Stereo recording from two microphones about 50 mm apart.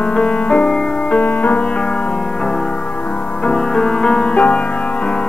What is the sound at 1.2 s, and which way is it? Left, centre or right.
Music, left.